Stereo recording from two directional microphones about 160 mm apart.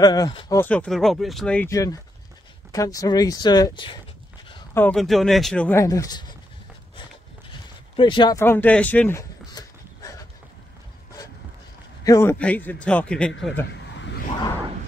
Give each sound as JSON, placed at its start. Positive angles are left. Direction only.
{"t": 0.0, "sound": "speech", "side_deg": 25}
{"t": 0.5, "sound": "speech", "side_deg": 10}
{"t": 1.7, "sound": "speech", "side_deg": 20}
{"t": 4.7, "sound": "speech", "side_deg": 5}
{"t": 5.8, "sound": "speech", "side_deg": 20}
{"t": 7.0, "sound": "a sound", "side_deg": 30}
{"t": 8.4, "sound": "a man's voice", "side_deg": 15}
{"t": 9.5, "sound": "a sound", "side_deg": 25}
{"t": 12.0, "sound": "a man's voice", "side_deg": 20}